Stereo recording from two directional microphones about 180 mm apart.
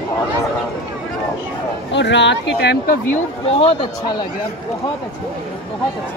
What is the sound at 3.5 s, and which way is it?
Speech, 30° left (ahead or behind).